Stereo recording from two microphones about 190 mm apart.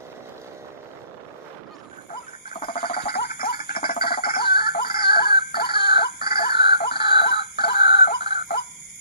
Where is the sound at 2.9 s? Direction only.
55° left (ahead or behind).